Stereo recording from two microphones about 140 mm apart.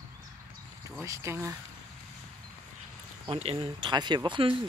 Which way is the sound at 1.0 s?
20° right (ahead or behind).